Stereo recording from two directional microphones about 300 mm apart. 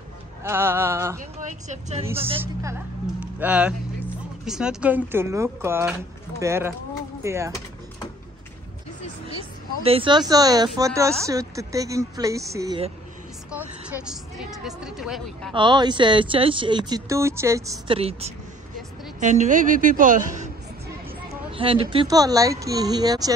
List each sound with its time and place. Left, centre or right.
0.4 s speech: centre
1.4 s a woman's voice: right
3.2 s speech: centre
9.8 s speech: centre
13.5 s a woman's voice: centre
15.5 s a woman's voice: centre
21.5 s speech: centre